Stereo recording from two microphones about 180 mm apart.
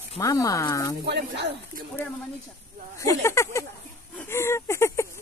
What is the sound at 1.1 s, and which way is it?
Speech, 65° right (ahead or behind).